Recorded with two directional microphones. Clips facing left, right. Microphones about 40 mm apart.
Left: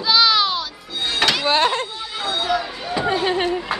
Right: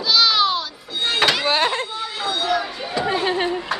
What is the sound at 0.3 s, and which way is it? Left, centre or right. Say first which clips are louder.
Music: even; centre.